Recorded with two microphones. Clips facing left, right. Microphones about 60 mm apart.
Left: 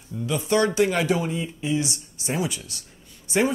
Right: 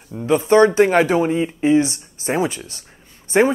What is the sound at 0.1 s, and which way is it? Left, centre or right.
Speech, right.